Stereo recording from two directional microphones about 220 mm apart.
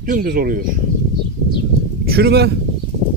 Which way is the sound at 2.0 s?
45° right (ahead or behind).